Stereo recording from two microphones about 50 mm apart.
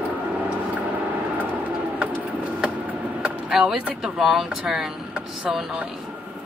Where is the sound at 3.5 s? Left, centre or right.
Centre.